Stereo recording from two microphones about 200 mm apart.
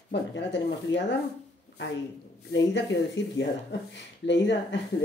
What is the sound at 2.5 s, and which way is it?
Speech, 60° left (ahead or behind).